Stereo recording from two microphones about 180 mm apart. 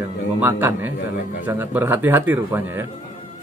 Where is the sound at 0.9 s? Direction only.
65° left (ahead or behind).